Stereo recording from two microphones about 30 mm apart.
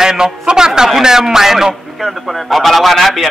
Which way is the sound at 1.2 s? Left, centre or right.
Centre.